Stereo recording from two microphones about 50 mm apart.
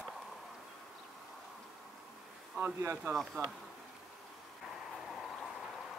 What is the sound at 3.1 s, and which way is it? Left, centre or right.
Speech, right.